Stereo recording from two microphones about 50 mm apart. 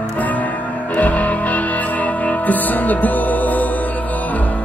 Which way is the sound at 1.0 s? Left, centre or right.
Left.